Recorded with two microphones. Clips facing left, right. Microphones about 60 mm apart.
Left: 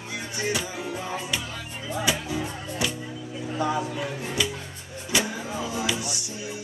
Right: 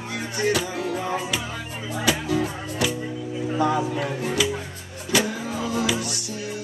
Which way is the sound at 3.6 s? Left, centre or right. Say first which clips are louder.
Right 4 dB; centre.